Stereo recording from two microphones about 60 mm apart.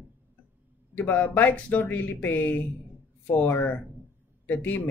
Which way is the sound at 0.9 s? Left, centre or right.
Left.